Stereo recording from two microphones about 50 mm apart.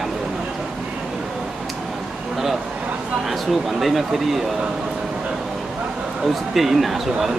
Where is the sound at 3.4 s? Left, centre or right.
Centre.